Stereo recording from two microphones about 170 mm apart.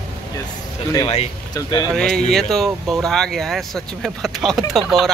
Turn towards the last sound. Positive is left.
turn(degrees=0)  # may be behind; listen again after turning